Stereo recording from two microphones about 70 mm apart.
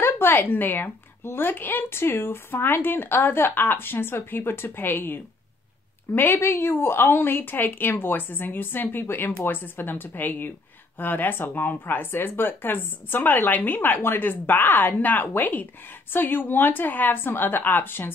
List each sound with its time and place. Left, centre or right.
0.0 s a woman's voice: left